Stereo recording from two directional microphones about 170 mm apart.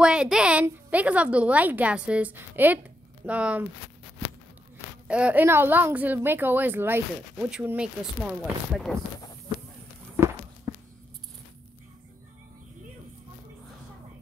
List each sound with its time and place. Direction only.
0.0 s a woman's voice: 5° right (ahead or behind)
5.0 s a woman's voice: 5° right (ahead or behind)
10.7 s a sound: 25° right (ahead or behind)